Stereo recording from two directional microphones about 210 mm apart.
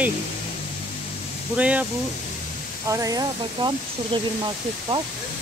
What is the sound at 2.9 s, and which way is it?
Speech, 15° right (ahead or behind).